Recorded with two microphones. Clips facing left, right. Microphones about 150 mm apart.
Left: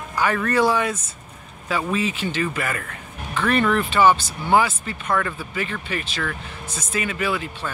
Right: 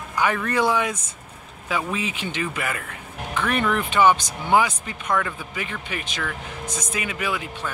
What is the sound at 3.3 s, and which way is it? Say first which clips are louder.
Music: left 3 dB; 10° right (ahead or behind).